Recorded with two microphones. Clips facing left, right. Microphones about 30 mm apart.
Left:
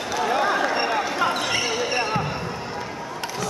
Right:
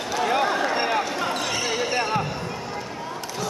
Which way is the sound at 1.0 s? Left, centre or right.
Centre.